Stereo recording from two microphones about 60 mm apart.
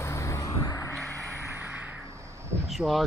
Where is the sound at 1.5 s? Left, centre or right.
Right.